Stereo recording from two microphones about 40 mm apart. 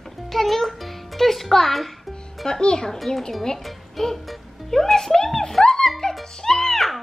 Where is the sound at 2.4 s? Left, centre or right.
Centre.